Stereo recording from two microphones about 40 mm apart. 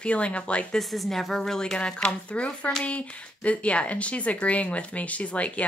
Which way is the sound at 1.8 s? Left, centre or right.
Left.